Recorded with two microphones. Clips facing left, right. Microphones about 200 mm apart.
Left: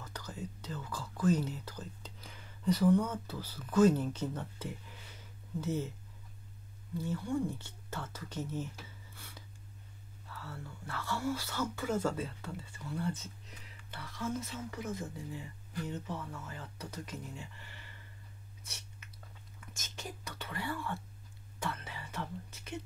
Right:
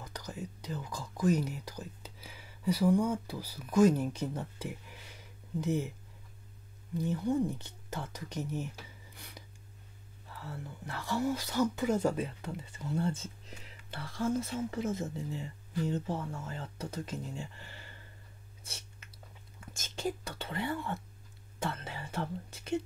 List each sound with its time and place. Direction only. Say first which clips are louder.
0.0 s speech: right 2 dB; 15° right (ahead or behind)
7.0 s speech: right 4 dB; 20° right (ahead or behind)
9.1 s a sound: right 2 dB; 15° right (ahead or behind)
10.4 s speech: right 4 dB; 20° right (ahead or behind)
18.6 s whispering: right 4 dB; 30° right (ahead or behind)
19.6 s speech: right 11 dB; 30° right (ahead or behind)
21.5 s whispering: right 3 dB; 30° right (ahead or behind)